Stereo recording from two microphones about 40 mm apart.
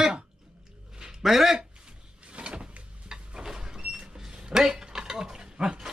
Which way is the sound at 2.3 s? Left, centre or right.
Right.